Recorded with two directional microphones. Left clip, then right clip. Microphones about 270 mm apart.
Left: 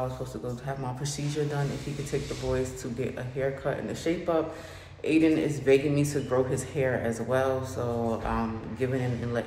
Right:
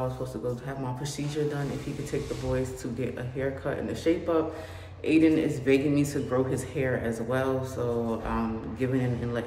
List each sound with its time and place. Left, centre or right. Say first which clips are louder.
0.7 s speech: left 1 dB; centre